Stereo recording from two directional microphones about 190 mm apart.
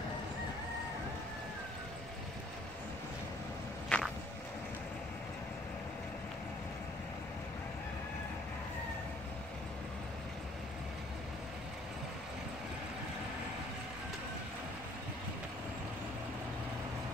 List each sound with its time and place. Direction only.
3.9 s walk: 5° left (ahead or behind)